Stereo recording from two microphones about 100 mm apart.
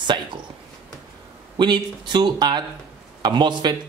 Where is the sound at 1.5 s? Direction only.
50° right (ahead or behind).